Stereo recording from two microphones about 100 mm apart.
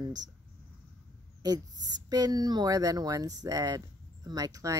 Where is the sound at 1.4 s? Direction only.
40° right (ahead or behind).